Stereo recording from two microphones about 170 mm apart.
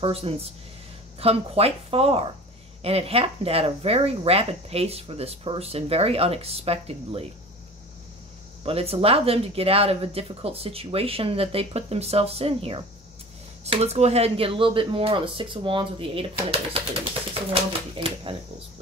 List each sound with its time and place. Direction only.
0.0 s speech: 35° right (ahead or behind)
8.6 s speech: 35° right (ahead or behind)